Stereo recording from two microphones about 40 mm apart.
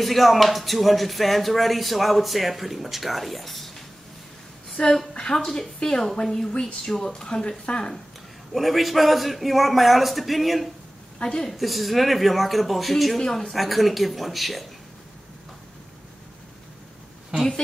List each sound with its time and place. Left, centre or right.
0.0 s speech: centre
4.8 s a woman's voice: centre
8.5 s speech: centre
11.1 s a woman's voice: left
11.5 s speech: centre
13.2 s speech: centre
13.6 s speech: centre